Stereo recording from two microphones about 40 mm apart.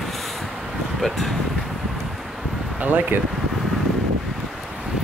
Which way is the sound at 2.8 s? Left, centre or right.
Right.